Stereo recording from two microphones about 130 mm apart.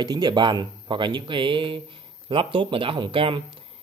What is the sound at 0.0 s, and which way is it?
A man's voice, 35° right (ahead or behind).